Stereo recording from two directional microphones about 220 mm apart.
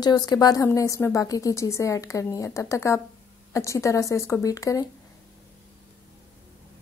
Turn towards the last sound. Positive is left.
turn(degrees=15)  # may be behind; listen again after turning